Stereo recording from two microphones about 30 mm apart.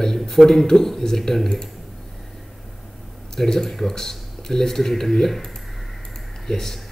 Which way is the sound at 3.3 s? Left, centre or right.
Centre.